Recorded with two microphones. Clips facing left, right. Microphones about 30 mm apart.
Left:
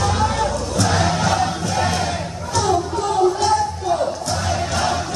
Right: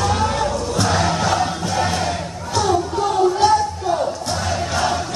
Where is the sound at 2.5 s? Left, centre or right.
Centre.